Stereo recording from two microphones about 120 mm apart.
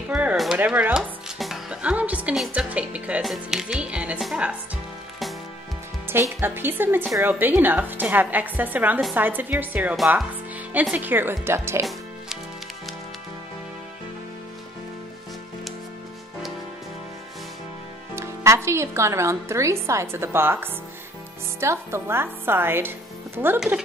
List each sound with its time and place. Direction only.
0.1 s a woman's voice: 10° right (ahead or behind)
1.4 s music: 5° right (ahead or behind)
2.3 s speech: centre (ahead or behind)
2.7 s music: 10° right (ahead or behind)
6.0 s a woman's voice: 20° right (ahead or behind)
9.9 s speech: centre (ahead or behind)
10.7 s a woman's voice: 15° right (ahead or behind)
18.1 s a woman's voice: 20° right (ahead or behind)